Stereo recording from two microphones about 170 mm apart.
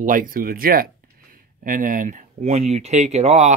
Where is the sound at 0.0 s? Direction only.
50° right (ahead or behind).